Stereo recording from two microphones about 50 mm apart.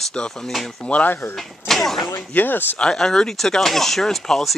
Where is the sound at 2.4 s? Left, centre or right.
Left.